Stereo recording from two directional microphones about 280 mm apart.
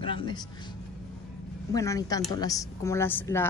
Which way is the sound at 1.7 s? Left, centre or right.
Centre.